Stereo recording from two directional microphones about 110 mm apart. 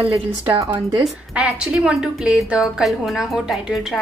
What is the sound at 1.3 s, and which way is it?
A woman's voice, 10° right (ahead or behind).